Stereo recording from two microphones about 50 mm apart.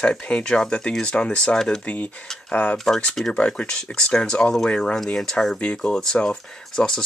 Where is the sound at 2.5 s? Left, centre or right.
Left.